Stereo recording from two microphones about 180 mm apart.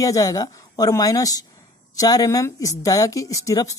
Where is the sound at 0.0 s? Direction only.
20° left (ahead or behind).